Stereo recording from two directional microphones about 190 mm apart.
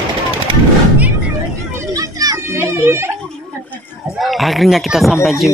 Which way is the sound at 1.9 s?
20° right (ahead or behind).